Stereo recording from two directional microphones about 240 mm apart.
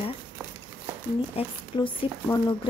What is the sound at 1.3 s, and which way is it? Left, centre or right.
Speech, centre.